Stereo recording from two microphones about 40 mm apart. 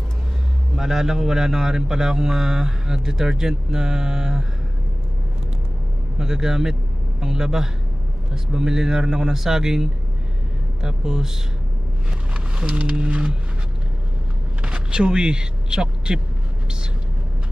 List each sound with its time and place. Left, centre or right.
0.7 s speech: centre
6.1 s a man's voice: centre
12.4 s a sound: right
14.6 s a man's voice: right